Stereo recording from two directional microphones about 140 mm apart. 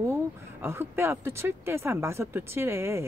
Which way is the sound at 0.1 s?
15° right (ahead or behind).